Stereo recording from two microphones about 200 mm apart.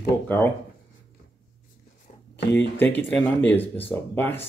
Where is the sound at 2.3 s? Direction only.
60° left (ahead or behind).